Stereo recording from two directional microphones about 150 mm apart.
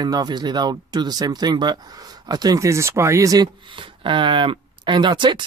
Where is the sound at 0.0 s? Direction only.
25° right (ahead or behind).